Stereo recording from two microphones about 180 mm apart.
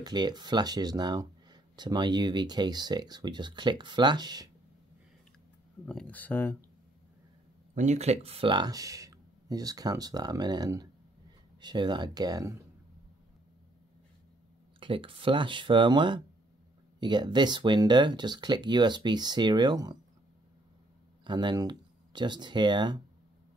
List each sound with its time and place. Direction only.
0.0 s speech: 25° right (ahead or behind)
5.9 s speech: 5° left (ahead or behind)
7.7 s speech: 40° right (ahead or behind); by 12.5 s 20° right (ahead or behind)
14.8 s speech: 30° right (ahead or behind)
21.2 s speech: 25° right (ahead or behind)